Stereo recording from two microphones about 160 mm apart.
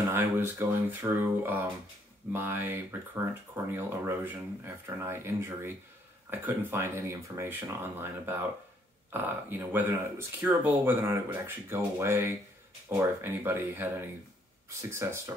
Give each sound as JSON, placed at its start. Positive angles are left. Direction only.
{"t": 0.1, "sound": "speech", "side_deg": -15}